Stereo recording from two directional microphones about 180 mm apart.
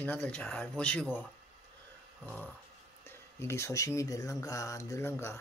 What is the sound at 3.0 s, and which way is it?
Speech, 15° left (ahead or behind).